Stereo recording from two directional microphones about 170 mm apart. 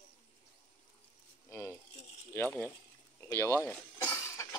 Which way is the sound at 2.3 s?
10° left (ahead or behind).